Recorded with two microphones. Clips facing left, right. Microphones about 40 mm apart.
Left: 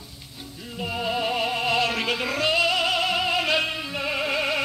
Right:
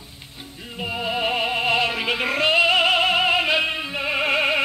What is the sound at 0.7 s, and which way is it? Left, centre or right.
Music, centre.